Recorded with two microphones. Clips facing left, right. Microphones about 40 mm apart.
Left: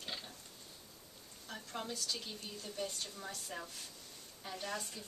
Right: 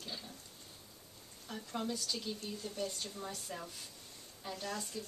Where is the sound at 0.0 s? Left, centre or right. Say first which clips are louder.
Left 1 dB; left.